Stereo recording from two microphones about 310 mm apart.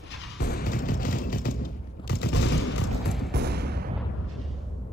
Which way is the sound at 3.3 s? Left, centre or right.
Right.